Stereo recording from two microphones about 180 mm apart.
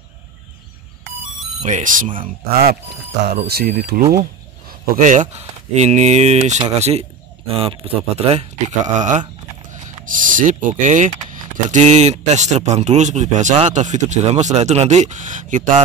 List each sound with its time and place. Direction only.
1.6 s speech: 45° right (ahead or behind)
3.3 s speech: 60° right (ahead or behind); by 15.8 s 45° right (ahead or behind)